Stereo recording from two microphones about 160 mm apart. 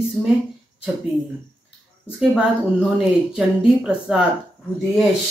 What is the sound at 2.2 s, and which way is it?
Speech, centre (ahead or behind).